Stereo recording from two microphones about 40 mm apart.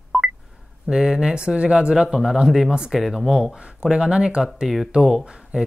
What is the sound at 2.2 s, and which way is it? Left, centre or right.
Speech, centre.